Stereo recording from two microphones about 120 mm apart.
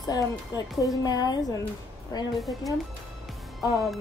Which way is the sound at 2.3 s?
Centre (ahead or behind).